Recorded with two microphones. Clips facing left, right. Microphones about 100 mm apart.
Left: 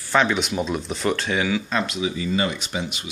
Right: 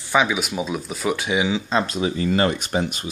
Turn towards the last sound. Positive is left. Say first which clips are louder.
# right 5 dB
turn(degrees=-45)  # may be behind; listen again after turning